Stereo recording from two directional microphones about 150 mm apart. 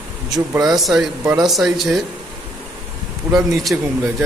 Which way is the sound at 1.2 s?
25° right (ahead or behind).